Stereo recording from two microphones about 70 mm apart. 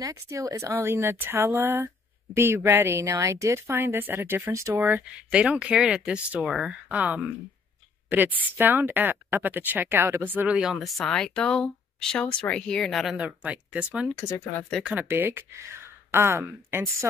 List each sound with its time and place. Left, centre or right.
0.0 s a woman's voice: right
5.3 s speech: centre
6.4 s speech: centre
6.9 s a woman's voice: right
10.6 s speech: centre
13.0 s speech: centre
13.4 s speech: centre
14.1 s speech: left
14.8 s speech: centre
15.0 s speech: right